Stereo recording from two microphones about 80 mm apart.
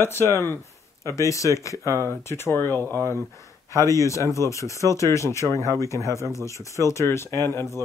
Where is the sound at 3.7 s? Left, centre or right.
Left.